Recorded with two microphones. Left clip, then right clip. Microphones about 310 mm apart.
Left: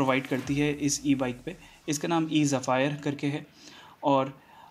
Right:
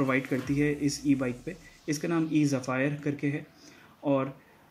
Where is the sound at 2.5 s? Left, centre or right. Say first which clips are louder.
Left 4 dB; left.